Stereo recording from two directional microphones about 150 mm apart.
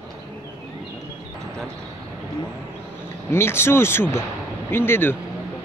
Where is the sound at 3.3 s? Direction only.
15° left (ahead or behind).